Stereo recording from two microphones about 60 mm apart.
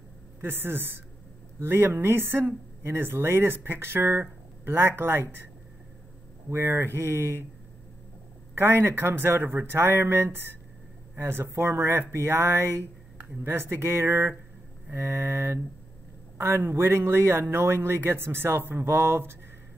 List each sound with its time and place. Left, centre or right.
0.4 s speech: right
6.5 s speech: right
8.5 s a man's voice: right